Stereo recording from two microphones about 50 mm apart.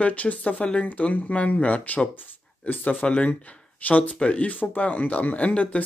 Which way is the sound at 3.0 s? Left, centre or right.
Left.